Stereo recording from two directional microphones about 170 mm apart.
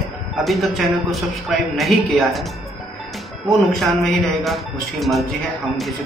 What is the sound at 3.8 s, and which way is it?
A man's voice, centre (ahead or behind).